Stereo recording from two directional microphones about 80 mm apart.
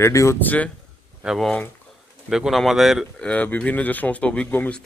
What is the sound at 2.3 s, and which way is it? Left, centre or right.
Speech, centre.